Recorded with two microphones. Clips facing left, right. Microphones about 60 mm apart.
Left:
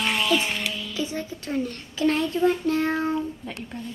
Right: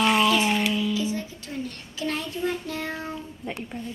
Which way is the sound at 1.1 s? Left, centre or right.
Left.